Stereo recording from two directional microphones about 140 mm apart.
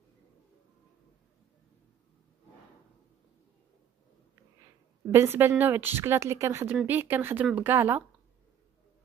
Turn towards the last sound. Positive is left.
turn(degrees=-15)  # may be behind; listen again after turning